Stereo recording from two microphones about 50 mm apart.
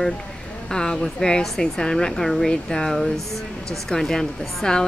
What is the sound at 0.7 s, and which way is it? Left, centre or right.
A woman's voice, centre.